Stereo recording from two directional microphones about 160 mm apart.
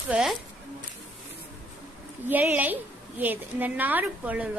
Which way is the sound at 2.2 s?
10° right (ahead or behind).